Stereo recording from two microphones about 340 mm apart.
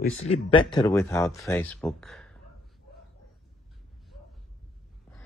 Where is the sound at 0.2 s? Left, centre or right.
Centre.